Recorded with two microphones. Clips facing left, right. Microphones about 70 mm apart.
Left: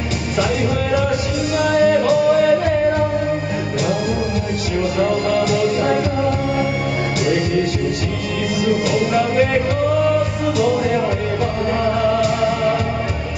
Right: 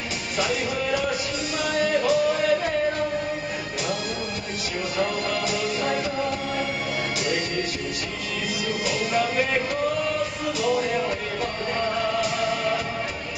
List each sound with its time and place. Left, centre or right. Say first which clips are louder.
1.6 s music: left 9 dB; centre
4.9 s music: left 8 dB; centre
8.6 s music: left 10 dB; centre
12.2 s music: left 7 dB; centre